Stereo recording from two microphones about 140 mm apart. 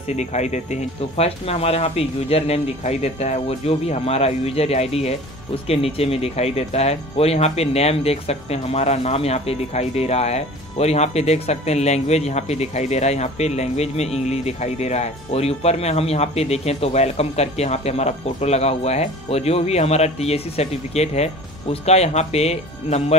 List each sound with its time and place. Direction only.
0.1 s speech: 55° left (ahead or behind)